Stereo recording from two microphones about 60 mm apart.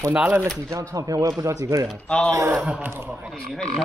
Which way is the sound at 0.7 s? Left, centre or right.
Right.